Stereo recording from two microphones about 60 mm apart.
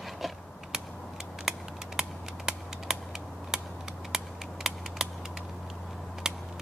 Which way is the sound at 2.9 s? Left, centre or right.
Centre.